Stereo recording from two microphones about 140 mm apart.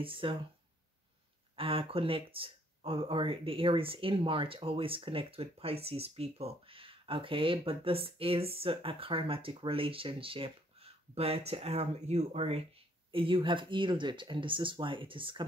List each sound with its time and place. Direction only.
0.0 s speech: 40° right (ahead or behind)
1.6 s speech: 40° right (ahead or behind)